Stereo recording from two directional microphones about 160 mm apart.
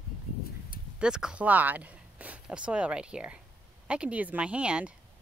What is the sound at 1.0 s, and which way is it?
Speech, 5° right (ahead or behind).